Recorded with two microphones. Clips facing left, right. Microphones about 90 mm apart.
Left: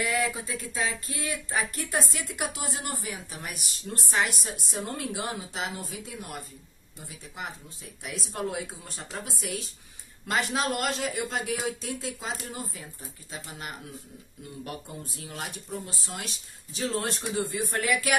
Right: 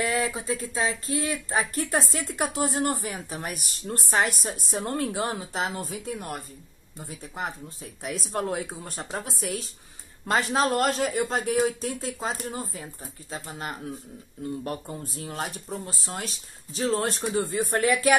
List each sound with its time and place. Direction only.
0.0 s speech: 35° right (ahead or behind)